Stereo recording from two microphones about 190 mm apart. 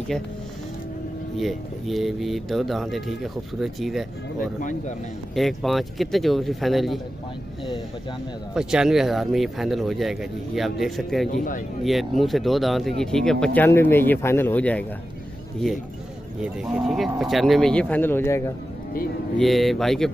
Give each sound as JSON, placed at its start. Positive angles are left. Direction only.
{"t": 1.4, "sound": "speech", "side_deg": 0}
{"t": 4.6, "sound": "a man's voice", "side_deg": 40}
{"t": 5.3, "sound": "speech", "side_deg": 0}
{"t": 8.5, "sound": "speech", "side_deg": -5}
{"t": 11.3, "sound": "a man's voice", "side_deg": 45}
{"t": 11.8, "sound": "speech", "side_deg": 0}
{"t": 16.3, "sound": "speech", "side_deg": -5}
{"t": 19.3, "sound": "speech", "side_deg": 0}